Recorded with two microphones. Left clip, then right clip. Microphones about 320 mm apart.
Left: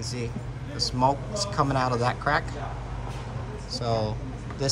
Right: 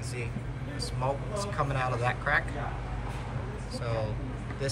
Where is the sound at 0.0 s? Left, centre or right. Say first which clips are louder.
Left 4 dB; centre.